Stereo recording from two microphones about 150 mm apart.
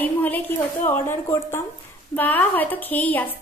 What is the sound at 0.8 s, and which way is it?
A woman's voice, 15° left (ahead or behind).